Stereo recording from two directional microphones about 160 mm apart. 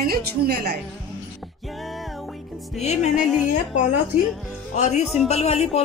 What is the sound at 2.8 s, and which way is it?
Music, 45° left (ahead or behind).